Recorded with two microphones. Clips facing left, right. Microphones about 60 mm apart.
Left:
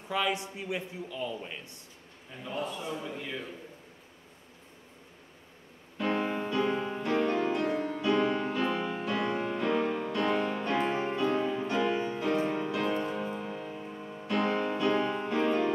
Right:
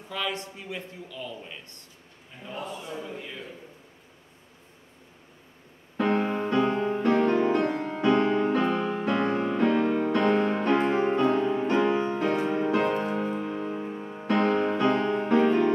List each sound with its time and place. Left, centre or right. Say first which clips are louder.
0.1 s a man's voice: left 2 dB; centre
5.9 s music: right 5 dB; right
7.2 s music: right 6 dB; right
7.5 s music: right 4 dB; right